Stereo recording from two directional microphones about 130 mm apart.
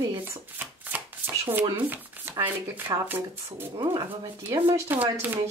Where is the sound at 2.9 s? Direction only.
35° right (ahead or behind).